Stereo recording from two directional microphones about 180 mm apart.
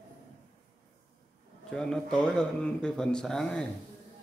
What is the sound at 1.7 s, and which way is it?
Speech, 5° left (ahead or behind).